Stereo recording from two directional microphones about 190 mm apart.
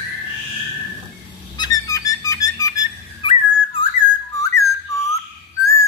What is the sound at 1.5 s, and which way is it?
Music, 20° left (ahead or behind).